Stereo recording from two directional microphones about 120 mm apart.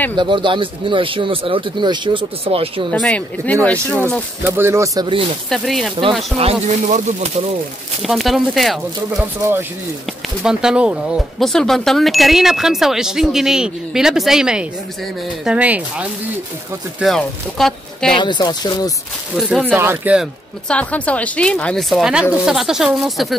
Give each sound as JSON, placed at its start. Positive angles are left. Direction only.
{"t": 0.1, "sound": "speech", "side_deg": -40}
{"t": 2.9, "sound": "speech", "side_deg": 10}
{"t": 4.5, "sound": "speech", "side_deg": -20}
{"t": 5.5, "sound": "speech", "side_deg": 0}
{"t": 6.3, "sound": "insect", "side_deg": -65}
{"t": 8.0, "sound": "speech", "side_deg": 0}
{"t": 9.4, "sound": "speech", "side_deg": -20}
{"t": 10.4, "sound": "speech", "side_deg": -5}
{"t": 11.3, "sound": "speech", "side_deg": 5}
{"t": 17.0, "sound": "speech", "side_deg": 5}
{"t": 18.1, "sound": "speech", "side_deg": 40}
{"t": 19.7, "sound": "speech", "side_deg": -15}
{"t": 20.6, "sound": "speech", "side_deg": 10}